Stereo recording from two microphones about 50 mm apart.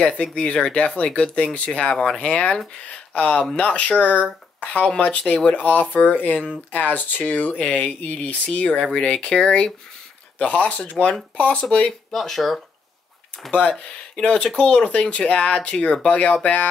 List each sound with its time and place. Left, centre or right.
0.2 s speech: left
8.9 s speech: centre
10.4 s speech: left
12.1 s speech: centre
13.5 s speech: left